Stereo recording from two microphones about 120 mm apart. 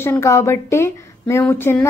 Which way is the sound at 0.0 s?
25° left (ahead or behind).